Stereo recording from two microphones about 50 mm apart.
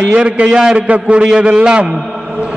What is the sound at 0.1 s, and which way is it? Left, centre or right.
Speech, right.